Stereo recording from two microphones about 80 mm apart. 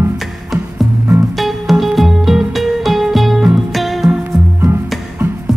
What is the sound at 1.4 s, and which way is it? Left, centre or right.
Music, centre.